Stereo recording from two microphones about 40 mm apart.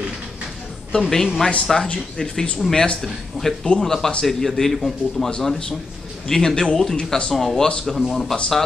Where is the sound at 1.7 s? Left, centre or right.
Centre.